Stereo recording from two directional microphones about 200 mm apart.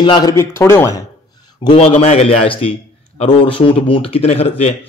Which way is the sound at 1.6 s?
30° left (ahead or behind).